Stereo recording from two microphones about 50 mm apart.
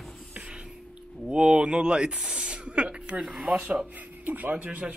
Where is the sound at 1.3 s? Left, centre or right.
Right.